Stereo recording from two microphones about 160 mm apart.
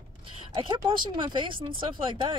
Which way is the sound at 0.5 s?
30° right (ahead or behind).